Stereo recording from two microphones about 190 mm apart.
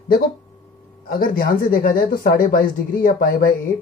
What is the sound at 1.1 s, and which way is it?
Speech, 50° left (ahead or behind).